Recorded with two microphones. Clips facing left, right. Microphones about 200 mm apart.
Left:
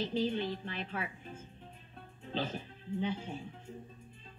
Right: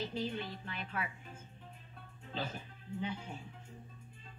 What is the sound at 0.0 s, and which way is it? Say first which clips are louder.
A woman's voice: left 6 dB; 30° left (ahead or behind).